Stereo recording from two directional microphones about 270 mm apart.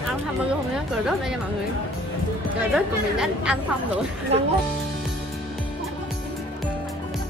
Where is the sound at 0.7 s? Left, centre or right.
Centre.